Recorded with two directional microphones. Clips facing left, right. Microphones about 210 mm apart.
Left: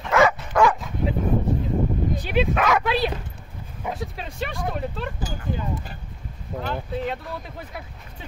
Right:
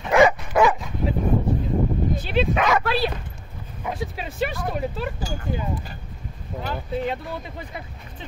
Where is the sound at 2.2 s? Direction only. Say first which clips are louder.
Left 1 dB; 15° left (ahead or behind).